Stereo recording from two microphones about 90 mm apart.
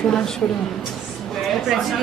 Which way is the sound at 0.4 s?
15° left (ahead or behind).